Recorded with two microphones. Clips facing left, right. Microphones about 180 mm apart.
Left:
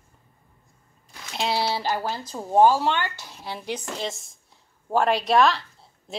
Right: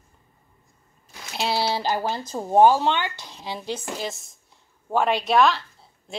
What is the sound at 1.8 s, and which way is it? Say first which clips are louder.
Speech: right 2 dB; 20° right (ahead or behind).